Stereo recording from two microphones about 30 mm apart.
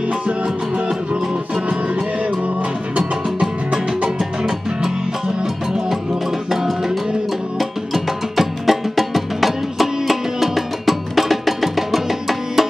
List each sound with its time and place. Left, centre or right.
3.0 s music: right
6.5 s music: centre